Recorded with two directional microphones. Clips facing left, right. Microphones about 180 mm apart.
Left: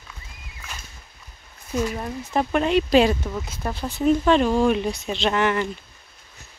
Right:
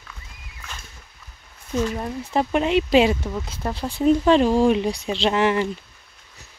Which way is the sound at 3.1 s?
10° right (ahead or behind).